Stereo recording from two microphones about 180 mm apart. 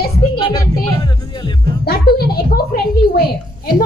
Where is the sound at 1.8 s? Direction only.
60° left (ahead or behind).